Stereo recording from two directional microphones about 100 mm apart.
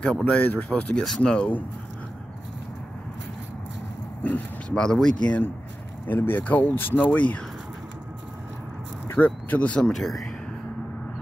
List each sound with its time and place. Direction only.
0.0 s speech: 10° left (ahead or behind)
4.2 s speech: 15° left (ahead or behind)
9.1 s speech: 15° left (ahead or behind)